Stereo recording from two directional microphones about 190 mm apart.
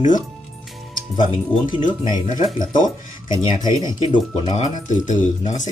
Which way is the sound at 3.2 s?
25° left (ahead or behind).